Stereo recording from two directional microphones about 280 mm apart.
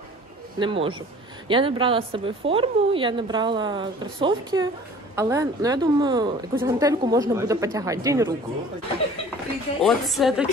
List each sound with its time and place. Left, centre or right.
0.6 s a woman's voice: centre
9.8 s a woman's voice: centre